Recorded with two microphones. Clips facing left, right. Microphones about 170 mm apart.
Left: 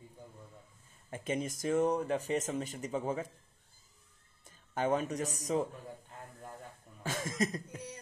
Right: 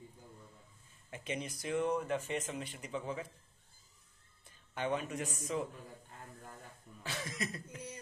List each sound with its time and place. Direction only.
1.1 s speech: 45° left (ahead or behind)
4.5 s speech: 40° left (ahead or behind)
7.0 s speech: 45° left (ahead or behind)